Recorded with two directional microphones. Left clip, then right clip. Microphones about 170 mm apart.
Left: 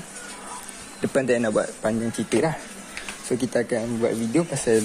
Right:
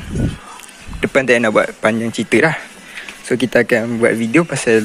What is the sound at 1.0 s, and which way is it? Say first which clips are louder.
A man's voice: right 9 dB; 15° right (ahead or behind).